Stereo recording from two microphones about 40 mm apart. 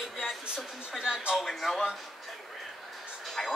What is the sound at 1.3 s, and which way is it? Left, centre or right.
Speech, centre.